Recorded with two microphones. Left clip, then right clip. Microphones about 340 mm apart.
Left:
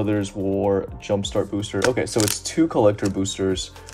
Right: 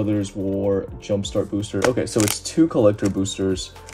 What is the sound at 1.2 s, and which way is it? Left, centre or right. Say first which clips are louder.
Speech: even; centre.